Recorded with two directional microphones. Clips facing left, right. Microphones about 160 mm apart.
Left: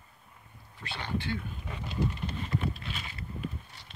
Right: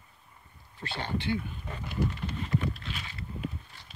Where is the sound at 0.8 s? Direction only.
30° right (ahead or behind).